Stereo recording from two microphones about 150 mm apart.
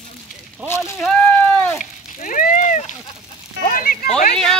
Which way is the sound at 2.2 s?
65° left (ahead or behind).